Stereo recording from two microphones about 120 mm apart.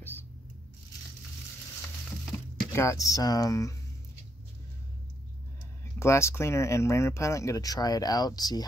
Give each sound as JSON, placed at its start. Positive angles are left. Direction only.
{"t": 2.7, "sound": "speech", "side_deg": 25}
{"t": 5.9, "sound": "speech", "side_deg": 25}